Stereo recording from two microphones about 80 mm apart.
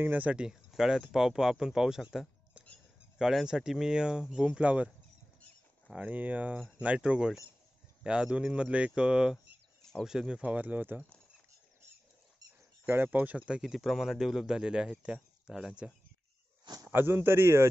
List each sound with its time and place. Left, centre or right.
0.0 s speech: right
0.5 s speech: centre
5.9 s speech: centre
12.8 s speech: right
13.5 s speech: centre
16.8 s speech: right